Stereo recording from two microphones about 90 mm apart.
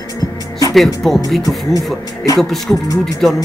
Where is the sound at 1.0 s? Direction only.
Centre (ahead or behind).